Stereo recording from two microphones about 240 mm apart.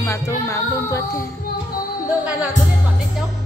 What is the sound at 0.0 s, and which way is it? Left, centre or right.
Music, centre.